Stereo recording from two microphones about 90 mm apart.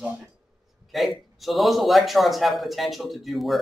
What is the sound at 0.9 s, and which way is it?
Speech, centre (ahead or behind).